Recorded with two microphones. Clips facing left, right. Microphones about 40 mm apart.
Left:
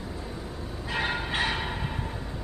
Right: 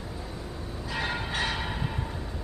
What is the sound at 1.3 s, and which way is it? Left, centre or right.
Music, centre.